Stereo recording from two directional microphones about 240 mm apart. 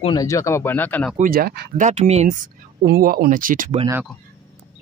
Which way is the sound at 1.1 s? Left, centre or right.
Right.